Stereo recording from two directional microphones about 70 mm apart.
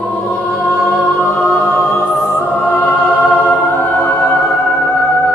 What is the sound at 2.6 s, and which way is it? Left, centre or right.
Music, left.